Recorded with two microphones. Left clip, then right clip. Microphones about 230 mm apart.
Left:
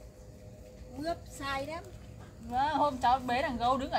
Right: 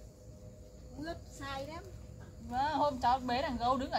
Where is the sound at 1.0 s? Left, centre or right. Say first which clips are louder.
Left 8 dB; left.